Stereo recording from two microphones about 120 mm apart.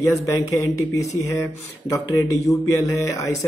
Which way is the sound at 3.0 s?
25° left (ahead or behind).